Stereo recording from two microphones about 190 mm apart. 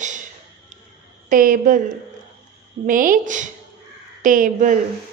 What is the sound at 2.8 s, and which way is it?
A woman's voice, 45° right (ahead or behind).